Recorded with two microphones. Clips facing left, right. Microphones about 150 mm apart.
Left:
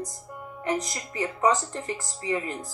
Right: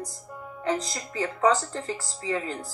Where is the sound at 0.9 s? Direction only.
10° left (ahead or behind).